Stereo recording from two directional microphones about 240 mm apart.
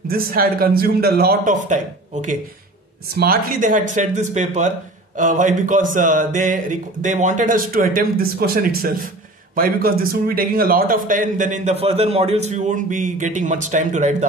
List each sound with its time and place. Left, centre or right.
0.1 s speech: right
3.2 s speech: right